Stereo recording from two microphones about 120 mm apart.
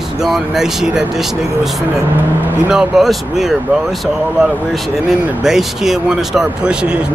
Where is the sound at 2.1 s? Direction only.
15° right (ahead or behind).